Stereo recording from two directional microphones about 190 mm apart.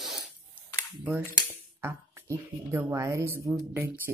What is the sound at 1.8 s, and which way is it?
Speech, 10° right (ahead or behind).